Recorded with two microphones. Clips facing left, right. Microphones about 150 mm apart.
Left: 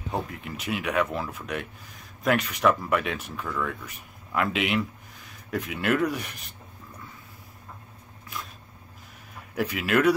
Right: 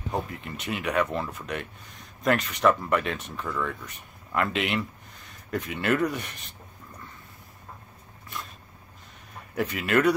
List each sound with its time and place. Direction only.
0.1 s speech: 5° left (ahead or behind)
9.6 s speech: centre (ahead or behind)